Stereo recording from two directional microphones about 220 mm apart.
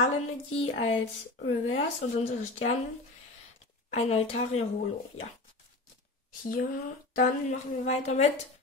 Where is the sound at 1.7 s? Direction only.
30° left (ahead or behind).